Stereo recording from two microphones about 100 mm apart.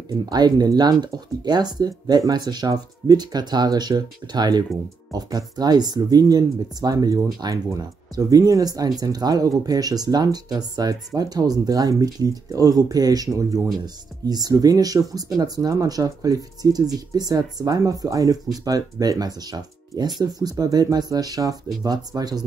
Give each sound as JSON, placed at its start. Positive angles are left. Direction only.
{"t": 0.3, "sound": "speech", "side_deg": -45}